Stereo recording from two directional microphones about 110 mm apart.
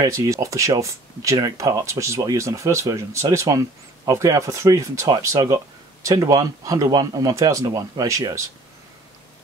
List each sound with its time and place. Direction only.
0.0 s speech: 30° right (ahead or behind)